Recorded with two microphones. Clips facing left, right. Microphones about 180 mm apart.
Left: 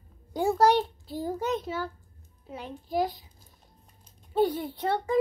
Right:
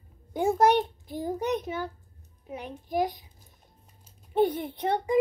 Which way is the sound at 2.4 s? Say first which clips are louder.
Right 1 dB; 15° right (ahead or behind).